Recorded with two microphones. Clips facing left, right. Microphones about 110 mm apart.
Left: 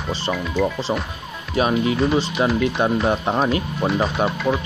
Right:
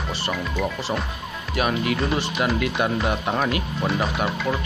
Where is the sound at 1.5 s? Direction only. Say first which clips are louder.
Left 4 dB; 25° left (ahead or behind).